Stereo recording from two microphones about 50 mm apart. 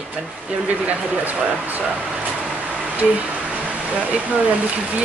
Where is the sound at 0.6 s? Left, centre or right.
Right.